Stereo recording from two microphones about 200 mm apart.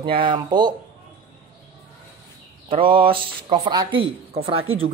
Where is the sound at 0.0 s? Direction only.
25° right (ahead or behind).